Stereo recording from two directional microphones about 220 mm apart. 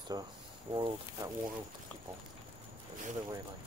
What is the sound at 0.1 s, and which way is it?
Speech, 15° right (ahead or behind).